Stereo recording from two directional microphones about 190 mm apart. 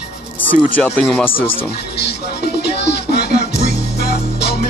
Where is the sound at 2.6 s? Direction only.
60° left (ahead or behind).